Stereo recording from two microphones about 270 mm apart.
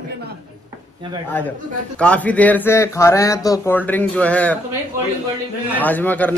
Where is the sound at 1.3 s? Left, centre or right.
Centre.